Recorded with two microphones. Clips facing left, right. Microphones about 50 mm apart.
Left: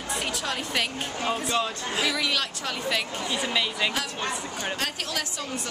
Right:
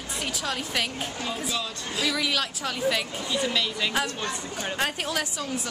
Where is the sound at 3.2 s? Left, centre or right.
Centre.